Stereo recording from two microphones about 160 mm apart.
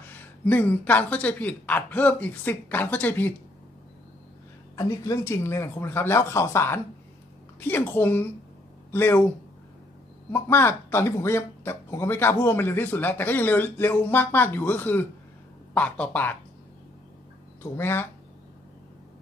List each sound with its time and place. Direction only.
0.5 s speech: 10° left (ahead or behind)
4.7 s speech: 20° left (ahead or behind)
10.3 s speech: 15° left (ahead or behind)
17.7 s speech: 15° left (ahead or behind)